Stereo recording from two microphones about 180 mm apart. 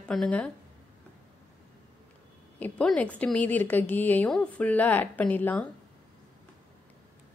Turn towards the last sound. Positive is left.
turn(degrees=10)  # may be behind; listen again after turning